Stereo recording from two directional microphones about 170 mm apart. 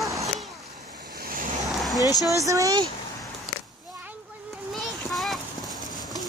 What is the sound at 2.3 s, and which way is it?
Speech, 20° right (ahead or behind).